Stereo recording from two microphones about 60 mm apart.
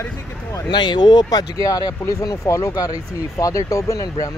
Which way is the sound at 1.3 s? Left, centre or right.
Left.